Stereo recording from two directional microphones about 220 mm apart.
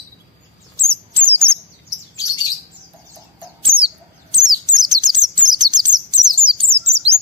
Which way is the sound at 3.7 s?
20° right (ahead or behind).